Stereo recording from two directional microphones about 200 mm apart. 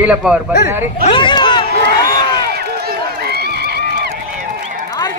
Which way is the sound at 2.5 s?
50° right (ahead or behind).